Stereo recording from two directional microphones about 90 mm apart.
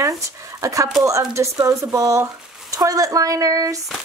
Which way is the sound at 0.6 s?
40° right (ahead or behind).